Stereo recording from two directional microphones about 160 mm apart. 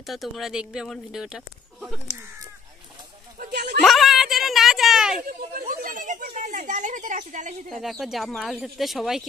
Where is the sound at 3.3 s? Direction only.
90° right.